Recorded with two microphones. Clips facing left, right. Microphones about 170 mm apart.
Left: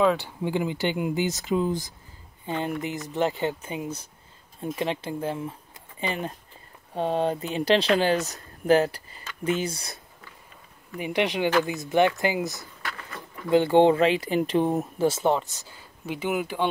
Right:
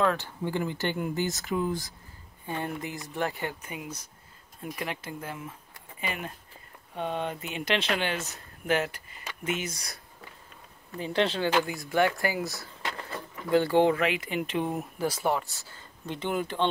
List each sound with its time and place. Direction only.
0.0 s speech: 15° left (ahead or behind); by 9.9 s 30° left (ahead or behind)
11.0 s speech: 15° left (ahead or behind)
16.1 s speech: 10° left (ahead or behind)